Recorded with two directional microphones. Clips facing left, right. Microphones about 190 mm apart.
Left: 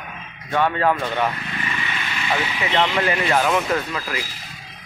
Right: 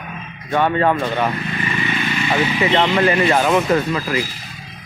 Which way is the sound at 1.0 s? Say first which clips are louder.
Right 3 dB; 15° right (ahead or behind).